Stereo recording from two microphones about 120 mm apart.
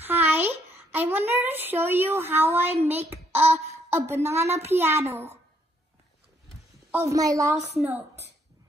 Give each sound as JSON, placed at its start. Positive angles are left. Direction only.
{"t": 0.0, "sound": "a sound", "side_deg": -15}
{"t": 2.9, "sound": "speech", "side_deg": -20}
{"t": 6.9, "sound": "a woman's voice", "side_deg": -25}